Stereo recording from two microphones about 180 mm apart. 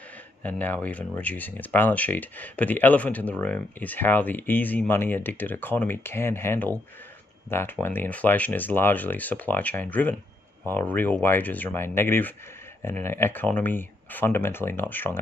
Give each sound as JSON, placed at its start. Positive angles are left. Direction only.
{"t": 0.4, "sound": "speech", "side_deg": 10}